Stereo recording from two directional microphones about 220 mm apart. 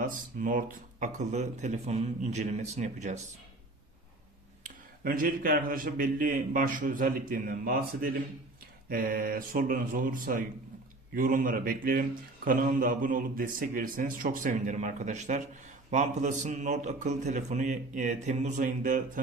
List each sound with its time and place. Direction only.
0.0 s speech: 40° right (ahead or behind)
4.6 s speech: 40° right (ahead or behind)